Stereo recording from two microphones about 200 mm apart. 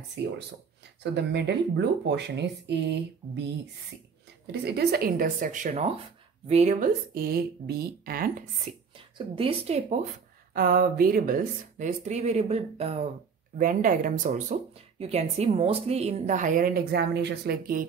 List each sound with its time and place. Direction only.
0.2 s speech: 60° right (ahead or behind)
4.5 s speech: 50° right (ahead or behind)
8.9 s a woman's voice: 25° right (ahead or behind)
10.5 s speech: 45° right (ahead or behind)
13.6 s speech: 40° right (ahead or behind)